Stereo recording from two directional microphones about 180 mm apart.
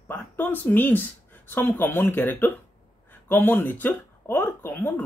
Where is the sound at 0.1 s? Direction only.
10° left (ahead or behind).